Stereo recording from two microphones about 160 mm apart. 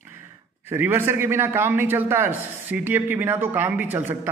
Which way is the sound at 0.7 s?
15° right (ahead or behind).